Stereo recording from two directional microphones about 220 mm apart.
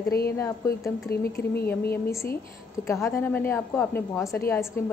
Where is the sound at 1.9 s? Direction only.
10° left (ahead or behind).